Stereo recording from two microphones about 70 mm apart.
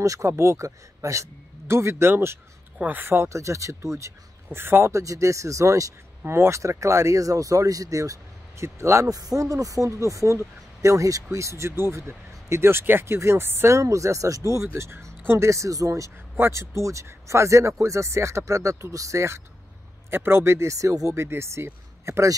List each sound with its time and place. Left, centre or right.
0.0 s speech: right
6.2 s speech: right
9.1 s speech: right
16.3 s speech: right